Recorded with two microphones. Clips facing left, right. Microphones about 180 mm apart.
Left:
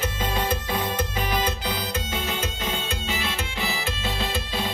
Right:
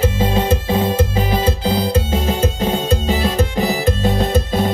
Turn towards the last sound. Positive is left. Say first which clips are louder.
# right 11 dB
turn(degrees=-45)  # may be behind; listen again after turning